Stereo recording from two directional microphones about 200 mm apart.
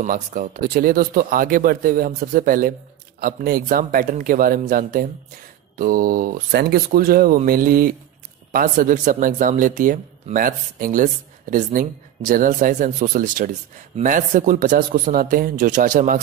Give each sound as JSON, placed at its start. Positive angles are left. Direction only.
{"t": 0.0, "sound": "speech", "side_deg": -40}